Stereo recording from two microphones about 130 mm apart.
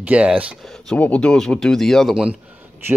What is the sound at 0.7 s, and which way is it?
Speech, 5° left (ahead or behind).